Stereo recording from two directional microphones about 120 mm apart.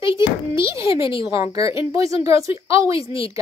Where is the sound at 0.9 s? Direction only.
45° left (ahead or behind).